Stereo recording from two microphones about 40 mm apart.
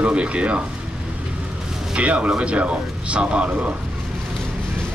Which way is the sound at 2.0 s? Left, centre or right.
Right.